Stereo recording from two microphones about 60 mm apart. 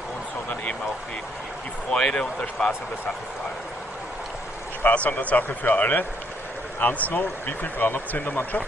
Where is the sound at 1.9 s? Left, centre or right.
Centre.